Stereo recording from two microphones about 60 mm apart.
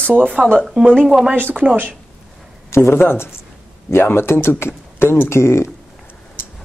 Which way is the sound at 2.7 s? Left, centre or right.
Left.